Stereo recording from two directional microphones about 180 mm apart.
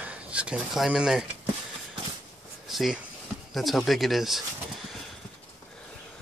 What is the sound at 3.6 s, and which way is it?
Speech, centre (ahead or behind).